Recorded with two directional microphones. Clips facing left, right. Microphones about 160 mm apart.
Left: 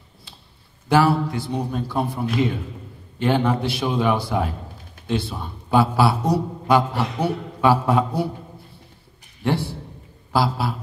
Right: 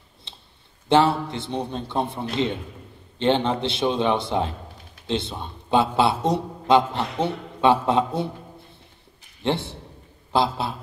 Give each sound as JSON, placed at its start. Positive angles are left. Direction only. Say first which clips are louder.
{"t": 0.3, "sound": "a sound", "louder": "even", "side_deg": -25}
{"t": 0.8, "sound": "a man's voice", "louder": "left 1 dB", "side_deg": -25}
{"t": 9.4, "sound": "a man's voice", "louder": "left 2 dB", "side_deg": -20}